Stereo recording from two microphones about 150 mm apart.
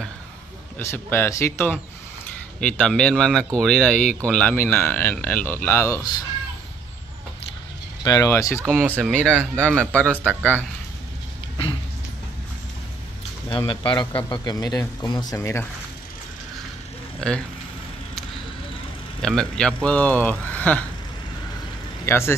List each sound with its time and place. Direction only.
0.7 s speech: 15° left (ahead or behind)
2.6 s speech: 5° left (ahead or behind); by 6.1 s 20° left (ahead or behind)
8.0 s a man's voice: 25° left (ahead or behind)
8.8 s speech: 10° right (ahead or behind)
9.1 s speech: 5° left (ahead or behind)
13.7 s a man's voice: 35° left (ahead or behind); by 15.6 s 20° left (ahead or behind)
17.2 s speech: 5° left (ahead or behind)
19.2 s speech: 5° left (ahead or behind)
22.0 s speech: 15° left (ahead or behind)